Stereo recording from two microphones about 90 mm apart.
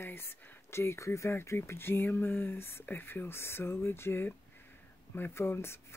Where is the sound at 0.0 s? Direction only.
25° left (ahead or behind).